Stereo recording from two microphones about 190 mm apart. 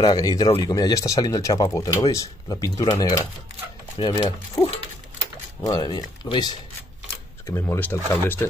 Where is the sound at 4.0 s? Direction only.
25° left (ahead or behind).